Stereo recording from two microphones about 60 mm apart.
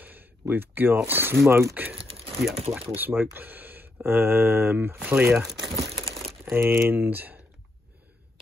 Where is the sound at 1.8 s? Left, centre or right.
Right.